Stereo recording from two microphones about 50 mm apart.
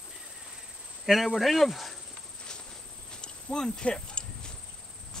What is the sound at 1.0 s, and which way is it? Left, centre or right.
Speech, centre.